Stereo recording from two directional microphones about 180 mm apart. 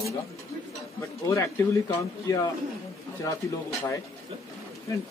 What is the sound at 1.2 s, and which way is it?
Speech, 15° left (ahead or behind).